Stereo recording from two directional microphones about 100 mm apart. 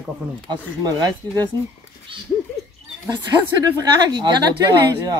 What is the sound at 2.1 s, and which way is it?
Speech, 60° right (ahead or behind).